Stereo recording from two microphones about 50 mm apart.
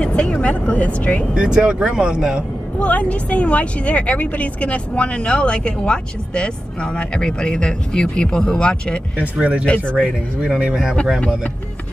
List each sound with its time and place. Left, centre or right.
0.0 s speech: left
1.3 s speech: centre
2.8 s speech: left
9.2 s speech: right